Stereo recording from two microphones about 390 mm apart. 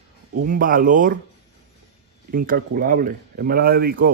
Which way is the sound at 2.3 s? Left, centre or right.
Right.